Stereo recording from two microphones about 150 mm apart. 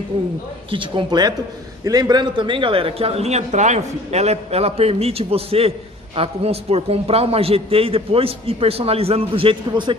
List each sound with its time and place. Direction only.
0.7 s a man's voice: 35° right (ahead or behind)